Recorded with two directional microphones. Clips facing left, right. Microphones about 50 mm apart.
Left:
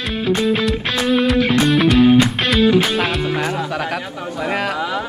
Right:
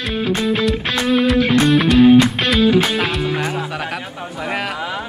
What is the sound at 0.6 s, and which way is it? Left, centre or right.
Music, centre.